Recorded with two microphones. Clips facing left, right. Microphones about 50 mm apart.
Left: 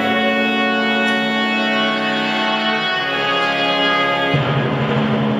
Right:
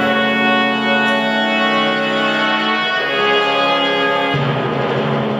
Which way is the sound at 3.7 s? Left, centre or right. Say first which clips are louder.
Right 1 dB; centre.